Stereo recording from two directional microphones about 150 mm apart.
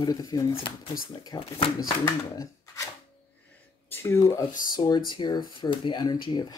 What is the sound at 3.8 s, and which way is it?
Speech, 20° left (ahead or behind).